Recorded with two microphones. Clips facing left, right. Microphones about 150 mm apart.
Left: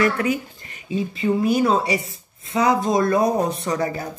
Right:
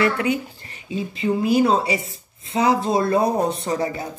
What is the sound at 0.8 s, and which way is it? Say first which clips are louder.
Speech: left 1 dB; 30° right (ahead or behind).